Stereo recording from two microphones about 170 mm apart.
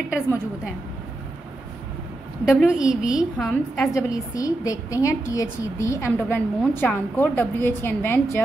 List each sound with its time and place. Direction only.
2.6 s a woman's voice: 5° right (ahead or behind)
4.1 s a woman's voice: 20° left (ahead or behind)